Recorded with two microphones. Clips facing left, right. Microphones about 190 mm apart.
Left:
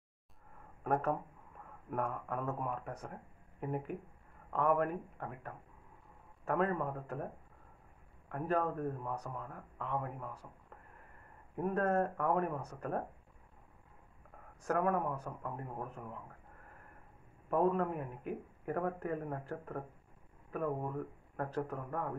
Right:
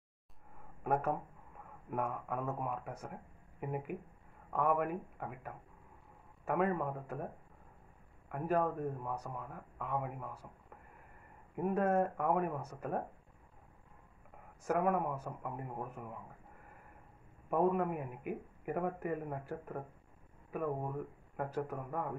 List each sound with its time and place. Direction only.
0.8 s speech: 5° right (ahead or behind)
8.3 s speech: 5° right (ahead or behind)
11.5 s speech: 5° right (ahead or behind)
14.6 s speech: 10° right (ahead or behind)
17.5 s speech: 10° right (ahead or behind)
21.4 s speech: 5° right (ahead or behind)